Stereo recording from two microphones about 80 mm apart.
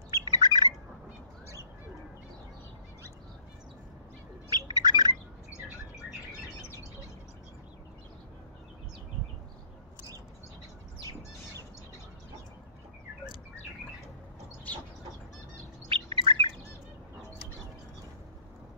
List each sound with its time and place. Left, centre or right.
0.1 s bird: right
4.5 s bird: right
15.9 s chirp: right